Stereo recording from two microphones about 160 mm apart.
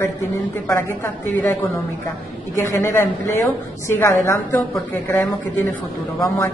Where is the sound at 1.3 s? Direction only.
10° left (ahead or behind).